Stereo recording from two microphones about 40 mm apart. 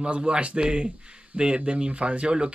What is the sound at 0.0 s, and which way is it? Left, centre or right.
Speech, right.